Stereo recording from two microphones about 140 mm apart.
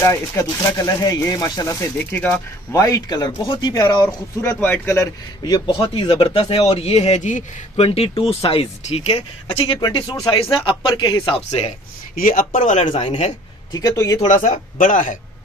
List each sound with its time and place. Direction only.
0.0 s speech: 20° left (ahead or behind)
2.1 s speech: 10° left (ahead or behind)
2.7 s speech: 25° left (ahead or behind)
5.7 s speech: 35° left (ahead or behind); by 7.4 s 60° left (ahead or behind)
7.7 s speech: 45° left (ahead or behind)
12.2 s speech: 80° left; by 13.1 s 50° left (ahead or behind)
13.7 s speech: 25° left (ahead or behind)
14.2 s speech: 70° left (ahead or behind)